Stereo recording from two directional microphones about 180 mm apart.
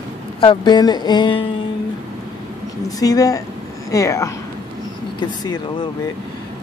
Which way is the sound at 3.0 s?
20° left (ahead or behind).